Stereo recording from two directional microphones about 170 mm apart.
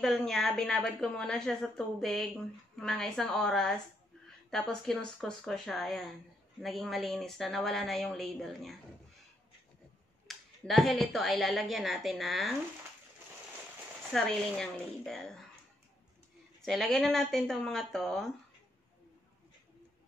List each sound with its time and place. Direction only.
0.0 s a woman's voice: centre (ahead or behind)
10.2 s a woman's voice: centre (ahead or behind)
14.1 s a woman's voice: centre (ahead or behind)
16.6 s a woman's voice: centre (ahead or behind)